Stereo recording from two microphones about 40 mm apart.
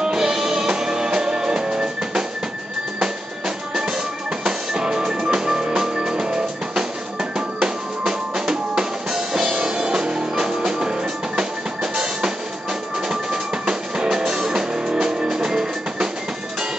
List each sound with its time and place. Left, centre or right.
0.0 s music: centre
3.0 s drum: centre
4.5 s music: right
8.0 s drum kit: centre
13.1 s drum: centre
14.0 s music: centre